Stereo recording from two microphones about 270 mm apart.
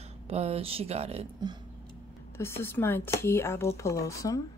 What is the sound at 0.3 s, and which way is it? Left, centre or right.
Speech, right.